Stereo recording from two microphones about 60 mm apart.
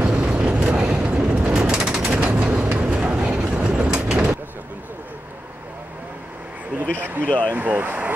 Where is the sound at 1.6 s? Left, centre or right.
Centre.